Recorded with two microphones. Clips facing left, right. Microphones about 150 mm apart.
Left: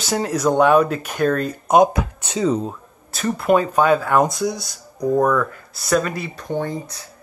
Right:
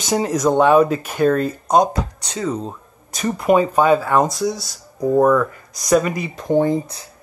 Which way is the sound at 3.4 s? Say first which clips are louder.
Right 2 dB; 5° right (ahead or behind).